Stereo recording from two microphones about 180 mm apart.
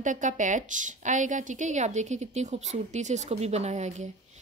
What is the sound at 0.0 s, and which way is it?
A woman's voice, 45° right (ahead or behind).